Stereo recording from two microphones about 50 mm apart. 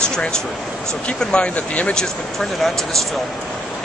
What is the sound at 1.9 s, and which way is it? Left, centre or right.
Speech, centre.